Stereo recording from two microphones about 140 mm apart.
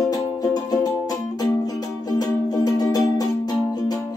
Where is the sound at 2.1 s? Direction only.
30° left (ahead or behind).